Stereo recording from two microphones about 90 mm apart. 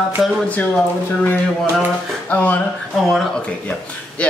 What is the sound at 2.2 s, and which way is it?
Speech, 20° left (ahead or behind).